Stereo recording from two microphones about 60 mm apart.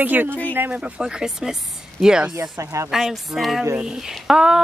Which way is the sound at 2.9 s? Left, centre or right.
Centre.